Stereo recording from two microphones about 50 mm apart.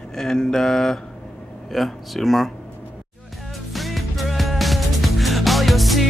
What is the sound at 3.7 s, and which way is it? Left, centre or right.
Music, centre.